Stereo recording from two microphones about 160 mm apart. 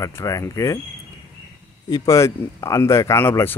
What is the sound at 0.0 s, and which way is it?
Speech, 20° left (ahead or behind).